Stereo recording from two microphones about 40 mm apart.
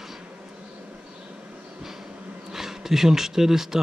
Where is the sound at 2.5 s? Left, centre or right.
Centre.